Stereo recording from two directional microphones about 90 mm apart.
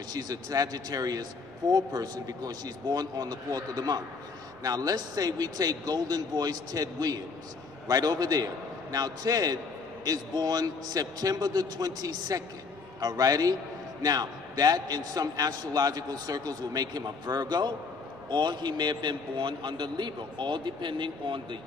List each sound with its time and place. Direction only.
0.1 s a man's voice: 45° right (ahead or behind); by 21.5 s 60° right (ahead or behind)